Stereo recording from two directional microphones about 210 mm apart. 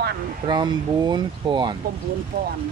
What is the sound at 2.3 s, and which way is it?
Speech, 40° right (ahead or behind).